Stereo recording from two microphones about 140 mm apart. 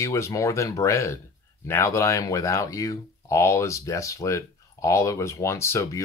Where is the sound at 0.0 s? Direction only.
20° left (ahead or behind).